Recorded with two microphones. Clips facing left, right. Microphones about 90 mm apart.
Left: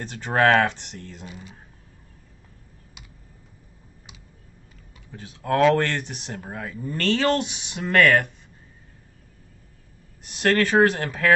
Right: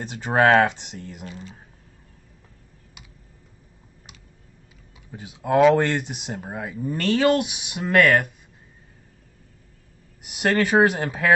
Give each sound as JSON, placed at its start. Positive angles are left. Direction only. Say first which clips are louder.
{"t": 0.0, "sound": "speech", "louder": "right 1 dB", "side_deg": -15}
{"t": 5.1, "sound": "speech", "louder": "right 3 dB", "side_deg": -15}
{"t": 10.2, "sound": "speech", "louder": "even", "side_deg": -15}